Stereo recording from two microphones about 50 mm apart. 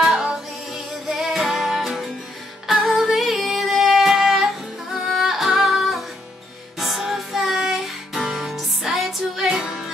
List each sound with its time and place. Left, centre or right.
0.0 s music: centre
9.5 s music: centre